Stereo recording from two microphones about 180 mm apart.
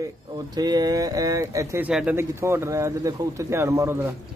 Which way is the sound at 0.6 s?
20° right (ahead or behind).